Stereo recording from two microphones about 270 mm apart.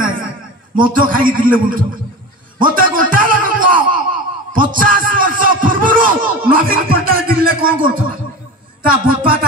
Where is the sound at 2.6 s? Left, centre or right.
Right.